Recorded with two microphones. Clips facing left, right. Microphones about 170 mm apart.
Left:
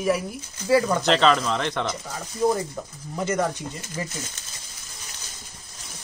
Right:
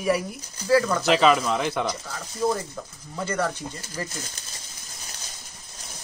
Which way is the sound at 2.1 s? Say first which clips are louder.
Left 4 dB; 15° left (ahead or behind).